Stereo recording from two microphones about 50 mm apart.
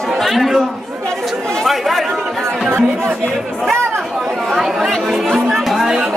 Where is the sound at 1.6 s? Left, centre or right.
Centre.